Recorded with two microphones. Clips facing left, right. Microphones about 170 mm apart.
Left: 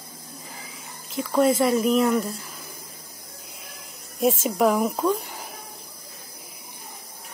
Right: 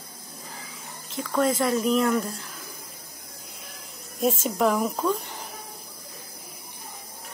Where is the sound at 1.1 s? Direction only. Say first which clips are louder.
Left 4 dB; 10° left (ahead or behind).